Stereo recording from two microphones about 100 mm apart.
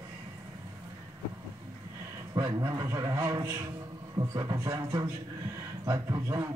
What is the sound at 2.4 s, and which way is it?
A man's voice, 40° right (ahead or behind).